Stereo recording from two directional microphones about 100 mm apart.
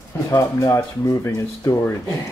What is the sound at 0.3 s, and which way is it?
Speech, 30° left (ahead or behind).